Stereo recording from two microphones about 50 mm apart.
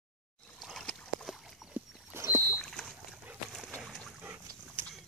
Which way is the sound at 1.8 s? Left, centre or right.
Right.